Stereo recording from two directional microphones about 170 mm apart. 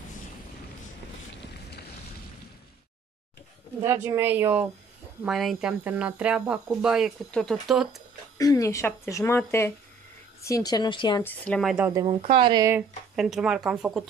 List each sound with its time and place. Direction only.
3.8 s speech: 15° right (ahead or behind)
8.4 s a woman's voice: 20° left (ahead or behind)
11.2 s speech: 5° left (ahead or behind)
11.9 s speech: 25° right (ahead or behind)
13.1 s speech: centre (ahead or behind)